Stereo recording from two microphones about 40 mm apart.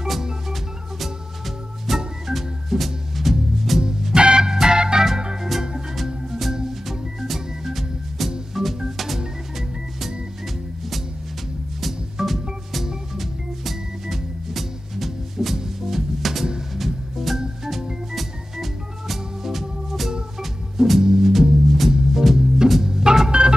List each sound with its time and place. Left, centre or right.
0.0 s music: centre
4.1 s organ: right
6.9 s music: centre
8.6 s organ: centre
8.9 s music: centre
11.8 s music: centre
18.1 s organ: centre
21.0 s music: centre
21.3 s music: centre
22.8 s organ: centre